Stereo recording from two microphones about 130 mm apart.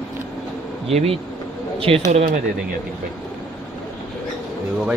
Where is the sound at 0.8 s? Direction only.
55° right (ahead or behind).